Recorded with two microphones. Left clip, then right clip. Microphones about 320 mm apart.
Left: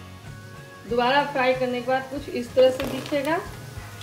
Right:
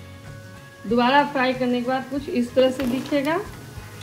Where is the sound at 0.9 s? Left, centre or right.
Right.